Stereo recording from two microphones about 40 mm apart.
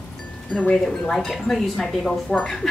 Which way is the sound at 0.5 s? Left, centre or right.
Left.